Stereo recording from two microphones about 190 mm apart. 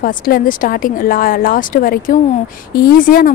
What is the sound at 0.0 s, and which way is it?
A woman's voice, 50° left (ahead or behind).